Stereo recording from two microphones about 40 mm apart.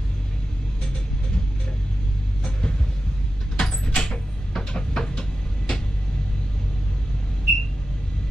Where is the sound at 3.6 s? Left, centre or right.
Centre.